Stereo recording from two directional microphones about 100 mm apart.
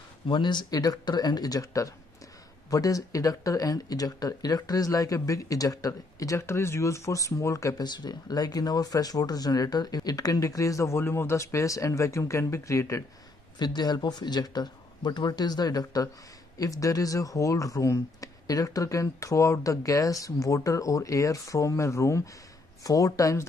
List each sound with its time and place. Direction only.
0.3 s speech: 50° left (ahead or behind); by 7.8 s 35° left (ahead or behind)
7.8 s speech: 45° left (ahead or behind); by 13.0 s 30° left (ahead or behind)
13.6 s speech: 45° left (ahead or behind)